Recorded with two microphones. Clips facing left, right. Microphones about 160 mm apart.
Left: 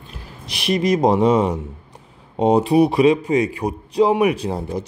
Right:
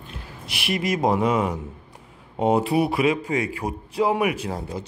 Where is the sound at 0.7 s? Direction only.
20° left (ahead or behind).